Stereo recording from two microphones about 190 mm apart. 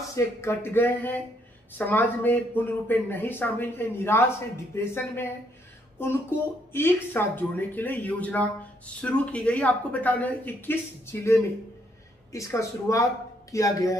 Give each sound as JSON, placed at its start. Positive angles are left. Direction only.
{"t": 0.1, "sound": "speech", "side_deg": 15}